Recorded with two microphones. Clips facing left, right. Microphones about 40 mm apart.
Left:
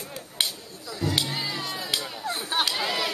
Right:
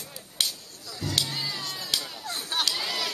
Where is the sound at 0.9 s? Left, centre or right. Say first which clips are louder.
Left 3 dB; centre.